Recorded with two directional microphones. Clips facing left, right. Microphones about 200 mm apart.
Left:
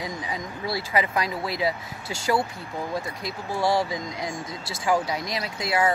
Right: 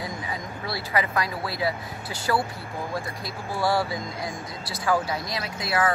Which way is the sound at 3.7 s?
20° left (ahead or behind).